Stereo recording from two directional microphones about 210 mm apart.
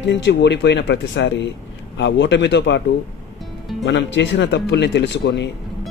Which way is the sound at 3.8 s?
60° left (ahead or behind).